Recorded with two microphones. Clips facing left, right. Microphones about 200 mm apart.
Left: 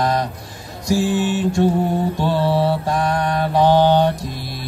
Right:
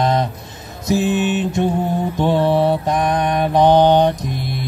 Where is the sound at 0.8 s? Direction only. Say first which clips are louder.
Right 1 dB; 20° right (ahead or behind).